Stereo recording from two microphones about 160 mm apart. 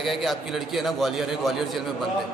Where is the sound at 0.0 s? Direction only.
Centre (ahead or behind).